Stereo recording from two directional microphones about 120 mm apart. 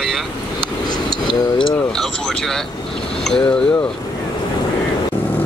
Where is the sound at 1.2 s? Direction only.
40° left (ahead or behind).